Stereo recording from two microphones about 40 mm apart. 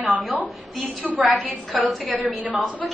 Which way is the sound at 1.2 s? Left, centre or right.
Centre.